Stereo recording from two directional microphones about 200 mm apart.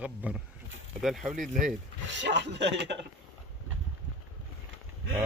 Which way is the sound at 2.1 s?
60° right (ahead or behind).